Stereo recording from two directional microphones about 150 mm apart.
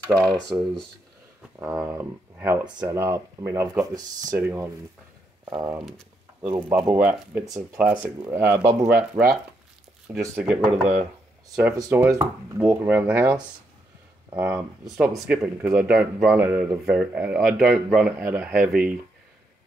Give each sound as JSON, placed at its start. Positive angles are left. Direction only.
{"t": 0.2, "sound": "speech", "side_deg": 0}
{"t": 1.6, "sound": "speech", "side_deg": -10}
{"t": 6.4, "sound": "speech", "side_deg": -15}
{"t": 11.7, "sound": "speech", "side_deg": -20}